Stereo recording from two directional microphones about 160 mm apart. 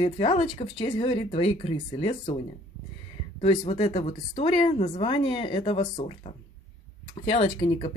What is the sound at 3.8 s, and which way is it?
Speech, 45° left (ahead or behind).